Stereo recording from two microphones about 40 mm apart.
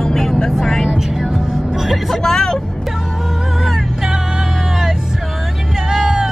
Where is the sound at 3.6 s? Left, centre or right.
Centre.